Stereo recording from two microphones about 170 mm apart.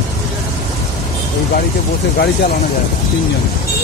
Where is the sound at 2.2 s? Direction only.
70° left (ahead or behind).